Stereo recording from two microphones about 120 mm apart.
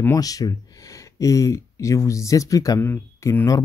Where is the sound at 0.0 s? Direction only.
30° left (ahead or behind).